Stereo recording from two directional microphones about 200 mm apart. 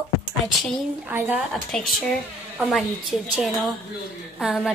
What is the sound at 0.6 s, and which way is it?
A woman's voice, centre (ahead or behind).